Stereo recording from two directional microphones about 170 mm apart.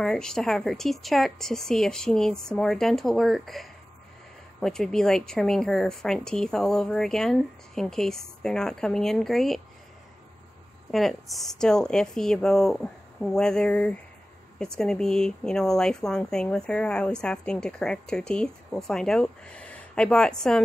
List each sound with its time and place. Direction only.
0.0 s speech: 5° left (ahead or behind)
10.9 s speech: centre (ahead or behind)